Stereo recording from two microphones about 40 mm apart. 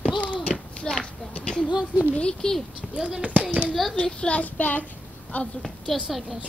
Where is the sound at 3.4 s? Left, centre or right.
Right.